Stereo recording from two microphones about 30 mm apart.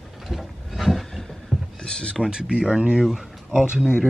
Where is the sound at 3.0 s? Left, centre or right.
Centre.